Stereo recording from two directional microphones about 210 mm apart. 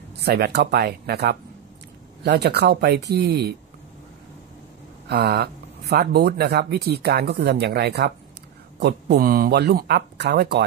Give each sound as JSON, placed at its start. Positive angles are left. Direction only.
{"t": 0.2, "sound": "speech", "side_deg": -50}
{"t": 5.0, "sound": "speech", "side_deg": -50}